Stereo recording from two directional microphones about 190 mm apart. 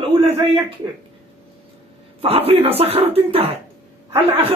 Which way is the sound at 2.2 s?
30° right (ahead or behind).